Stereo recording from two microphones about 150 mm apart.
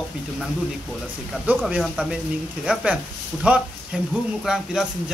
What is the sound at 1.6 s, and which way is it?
Speech, centre (ahead or behind).